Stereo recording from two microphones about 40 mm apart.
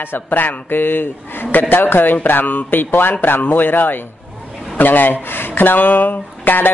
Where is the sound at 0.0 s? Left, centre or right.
Left.